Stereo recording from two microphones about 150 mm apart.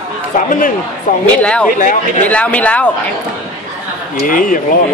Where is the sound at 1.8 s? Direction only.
60° left (ahead or behind).